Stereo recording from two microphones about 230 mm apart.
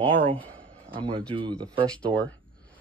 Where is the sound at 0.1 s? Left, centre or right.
Right.